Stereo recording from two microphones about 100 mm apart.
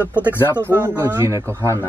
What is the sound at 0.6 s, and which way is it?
A man's voice, 20° right (ahead or behind).